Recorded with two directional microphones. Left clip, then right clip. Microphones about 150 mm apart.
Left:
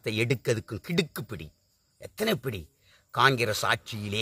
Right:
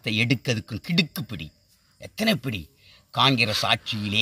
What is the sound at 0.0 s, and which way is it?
Speech, 15° left (ahead or behind).